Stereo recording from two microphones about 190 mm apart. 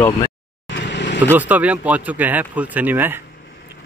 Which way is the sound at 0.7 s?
65° left (ahead or behind).